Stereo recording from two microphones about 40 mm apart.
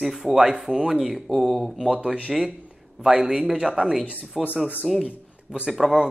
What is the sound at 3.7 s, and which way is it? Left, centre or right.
Speech, right.